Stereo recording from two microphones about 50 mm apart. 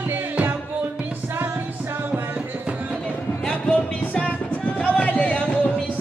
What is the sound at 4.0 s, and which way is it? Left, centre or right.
Music, left.